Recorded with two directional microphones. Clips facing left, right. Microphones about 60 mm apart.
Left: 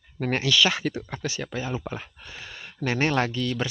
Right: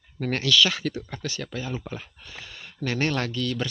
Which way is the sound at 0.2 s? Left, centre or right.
Left.